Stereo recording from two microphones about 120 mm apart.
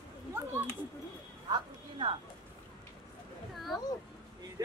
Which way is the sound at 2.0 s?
40° right (ahead or behind).